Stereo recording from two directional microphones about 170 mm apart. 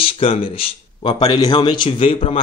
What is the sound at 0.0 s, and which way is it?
A man's voice, 30° left (ahead or behind).